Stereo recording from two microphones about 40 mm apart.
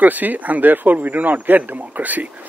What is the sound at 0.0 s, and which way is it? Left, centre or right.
A man's voice, right.